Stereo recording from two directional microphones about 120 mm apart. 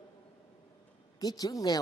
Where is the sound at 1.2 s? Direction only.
30° left (ahead or behind).